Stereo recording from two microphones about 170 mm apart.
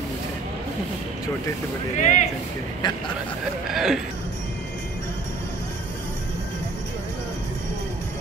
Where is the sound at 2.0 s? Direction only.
45° left (ahead or behind).